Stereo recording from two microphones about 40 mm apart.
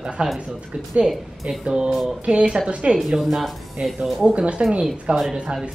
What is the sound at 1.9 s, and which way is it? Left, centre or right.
Speech, centre.